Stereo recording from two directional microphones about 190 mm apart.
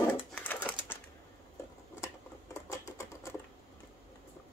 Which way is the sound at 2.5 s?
15° left (ahead or behind).